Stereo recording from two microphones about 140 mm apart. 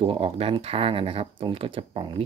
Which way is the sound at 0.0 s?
40° right (ahead or behind).